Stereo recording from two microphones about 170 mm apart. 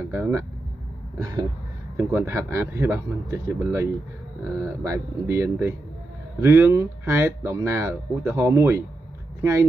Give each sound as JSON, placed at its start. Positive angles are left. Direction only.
{"t": 0.1, "sound": "speech", "side_deg": -15}
{"t": 1.2, "sound": "throat clearing", "side_deg": -20}
{"t": 2.0, "sound": "speech", "side_deg": -15}